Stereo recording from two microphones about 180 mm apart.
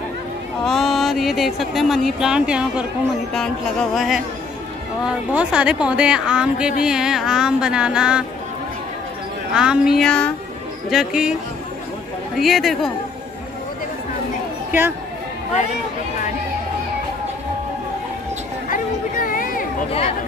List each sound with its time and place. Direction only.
0.7 s speech: centre (ahead or behind)
3.9 s speech: centre (ahead or behind)
9.5 s speech: 5° right (ahead or behind)
12.4 s speech: centre (ahead or behind)
18.7 s chatter: 50° left (ahead or behind)